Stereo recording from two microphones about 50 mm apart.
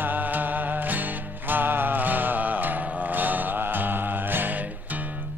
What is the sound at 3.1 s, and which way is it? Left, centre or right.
Mantra, right.